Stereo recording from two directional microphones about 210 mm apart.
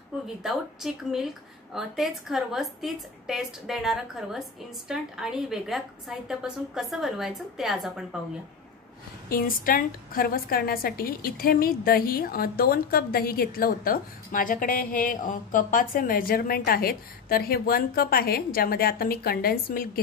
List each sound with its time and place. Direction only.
0.4 s speech: centre (ahead or behind)
9.3 s a woman's voice: 45° left (ahead or behind)